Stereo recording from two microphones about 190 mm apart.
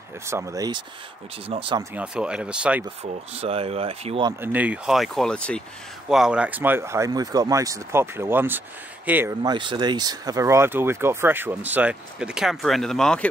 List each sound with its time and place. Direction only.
0.3 s speech: 15° right (ahead or behind)
2.0 s speech: 5° right (ahead or behind)
2.8 s speech: 30° right (ahead or behind)
4.3 s speech: 10° right (ahead or behind)
9.4 s speech: 25° right (ahead or behind); by 13.3 s 5° left (ahead or behind)